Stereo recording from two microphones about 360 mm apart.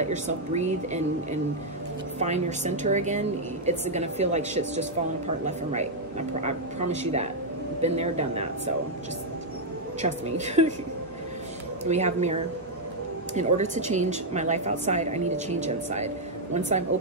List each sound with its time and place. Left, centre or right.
0.0 s a woman's voice: centre
10.0 s a woman's voice: centre
11.8 s a woman's voice: centre